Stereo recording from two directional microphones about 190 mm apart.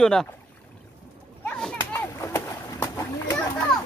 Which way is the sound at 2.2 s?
15° left (ahead or behind).